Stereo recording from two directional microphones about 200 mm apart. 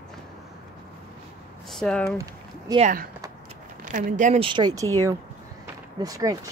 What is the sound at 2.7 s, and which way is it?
A woman's voice, 40° right (ahead or behind).